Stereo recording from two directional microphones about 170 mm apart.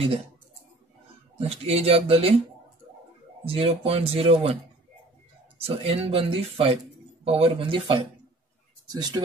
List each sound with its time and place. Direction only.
0.0 s speech: 35° right (ahead or behind)
1.4 s speech: 35° right (ahead or behind)
3.4 s speech: 35° right (ahead or behind)
5.6 s speech: 35° right (ahead or behind)